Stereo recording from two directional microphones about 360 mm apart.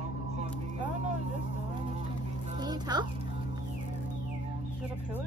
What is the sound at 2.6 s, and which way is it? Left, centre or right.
Speech, centre.